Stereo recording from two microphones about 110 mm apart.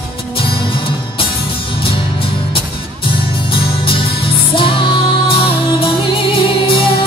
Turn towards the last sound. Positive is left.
turn(degrees=55)  # may be behind; listen again after turning